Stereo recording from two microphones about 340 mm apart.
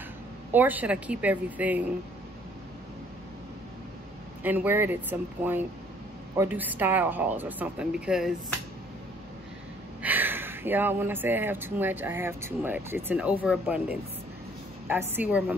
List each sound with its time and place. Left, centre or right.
0.5 s speech: centre
4.4 s speech: centre
10.0 s speech: centre